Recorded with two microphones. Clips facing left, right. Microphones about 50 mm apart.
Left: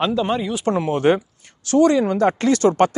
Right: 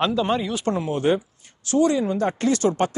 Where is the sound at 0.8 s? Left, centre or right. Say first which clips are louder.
Left 5 dB; left.